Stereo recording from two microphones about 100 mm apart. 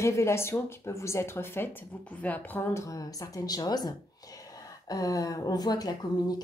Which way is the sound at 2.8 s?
35° left (ahead or behind).